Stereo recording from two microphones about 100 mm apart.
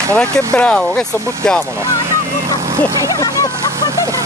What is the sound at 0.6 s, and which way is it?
A man's voice, 10° left (ahead or behind).